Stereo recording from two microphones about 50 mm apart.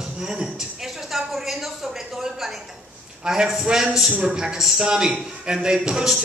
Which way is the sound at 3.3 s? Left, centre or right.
Centre.